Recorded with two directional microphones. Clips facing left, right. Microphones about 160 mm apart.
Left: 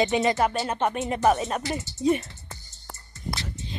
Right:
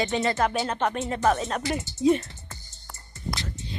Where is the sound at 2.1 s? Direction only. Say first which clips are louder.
Right 1 dB; 10° left (ahead or behind).